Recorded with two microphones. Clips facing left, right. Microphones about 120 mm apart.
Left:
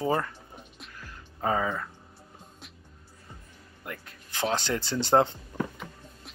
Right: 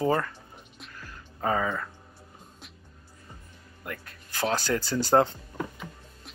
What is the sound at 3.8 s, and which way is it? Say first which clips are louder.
Music: right 2 dB; 20° left (ahead or behind).